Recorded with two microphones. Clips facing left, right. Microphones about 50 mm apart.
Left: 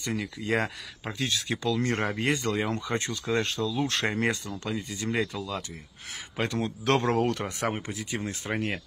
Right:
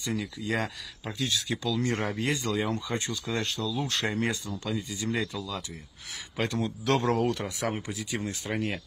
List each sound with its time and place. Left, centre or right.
0.0 s speech: left